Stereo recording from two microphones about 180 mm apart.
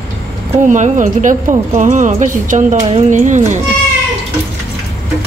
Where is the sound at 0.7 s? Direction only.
45° right (ahead or behind).